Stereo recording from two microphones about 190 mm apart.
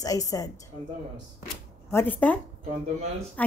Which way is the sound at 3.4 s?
5° left (ahead or behind).